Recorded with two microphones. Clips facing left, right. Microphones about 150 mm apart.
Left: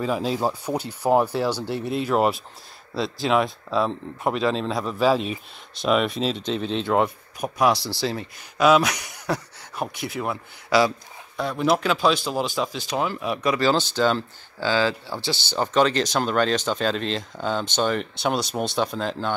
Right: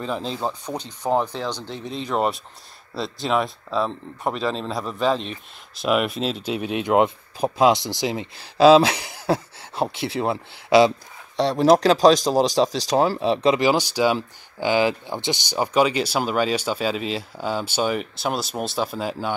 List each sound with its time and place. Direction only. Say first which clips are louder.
0.0 s speech: left 3 dB; 10° left (ahead or behind); by 8.3 s 15° right (ahead or behind)
8.4 s speech: right 5 dB; 30° right (ahead or behind)
13.6 s speech: right 1 dB; 15° right (ahead or behind)